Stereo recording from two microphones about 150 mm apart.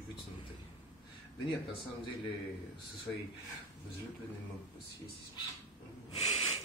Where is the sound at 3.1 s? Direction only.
10° left (ahead or behind).